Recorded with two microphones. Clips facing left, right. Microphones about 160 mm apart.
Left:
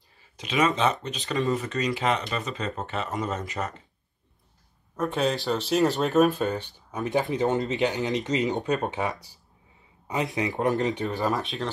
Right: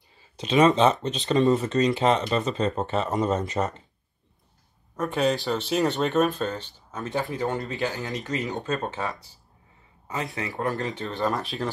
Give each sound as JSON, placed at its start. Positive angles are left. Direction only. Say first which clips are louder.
{"t": 0.4, "sound": "speech", "louder": "right 5 dB", "side_deg": -30}
{"t": 4.9, "sound": "speech", "louder": "right 1 dB", "side_deg": 0}
{"t": 11.1, "sound": "speech", "louder": "even", "side_deg": 0}